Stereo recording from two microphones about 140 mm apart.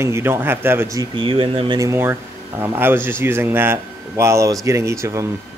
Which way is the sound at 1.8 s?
20° right (ahead or behind).